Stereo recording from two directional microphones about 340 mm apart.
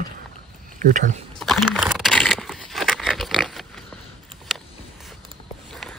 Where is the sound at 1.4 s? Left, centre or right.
Centre.